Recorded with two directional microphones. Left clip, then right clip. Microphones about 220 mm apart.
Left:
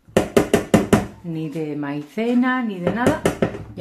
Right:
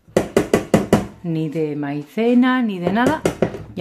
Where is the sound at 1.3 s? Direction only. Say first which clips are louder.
Right 8 dB; 35° right (ahead or behind).